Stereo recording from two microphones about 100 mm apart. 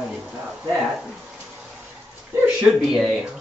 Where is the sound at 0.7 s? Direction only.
5° right (ahead or behind).